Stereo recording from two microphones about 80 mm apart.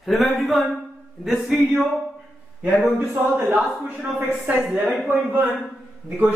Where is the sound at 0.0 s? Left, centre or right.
Centre.